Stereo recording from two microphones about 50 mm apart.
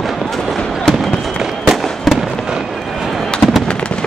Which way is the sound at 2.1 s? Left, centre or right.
Centre.